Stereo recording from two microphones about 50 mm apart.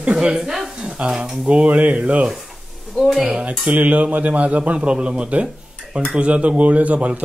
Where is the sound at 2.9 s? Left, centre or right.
Centre.